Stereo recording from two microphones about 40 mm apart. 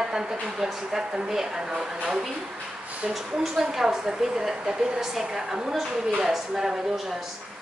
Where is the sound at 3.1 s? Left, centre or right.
Centre.